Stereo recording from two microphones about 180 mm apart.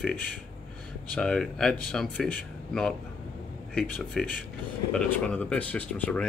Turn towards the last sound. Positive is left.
turn(degrees=5)  # may be behind; listen again after turning